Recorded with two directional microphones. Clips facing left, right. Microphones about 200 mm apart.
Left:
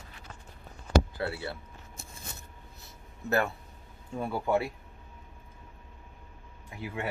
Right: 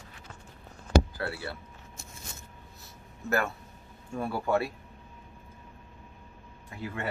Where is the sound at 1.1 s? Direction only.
25° left (ahead or behind).